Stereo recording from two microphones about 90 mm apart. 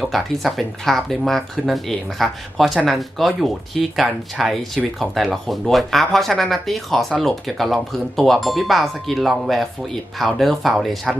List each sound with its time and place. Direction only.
0.0 s speech: centre (ahead or behind)